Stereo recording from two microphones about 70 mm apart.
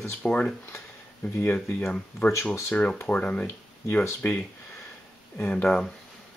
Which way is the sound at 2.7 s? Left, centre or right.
Centre.